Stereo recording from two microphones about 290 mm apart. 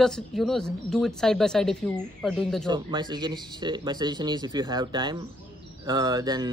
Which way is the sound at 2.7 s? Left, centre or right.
Centre.